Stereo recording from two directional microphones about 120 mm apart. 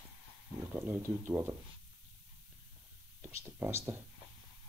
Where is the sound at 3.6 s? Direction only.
20° right (ahead or behind).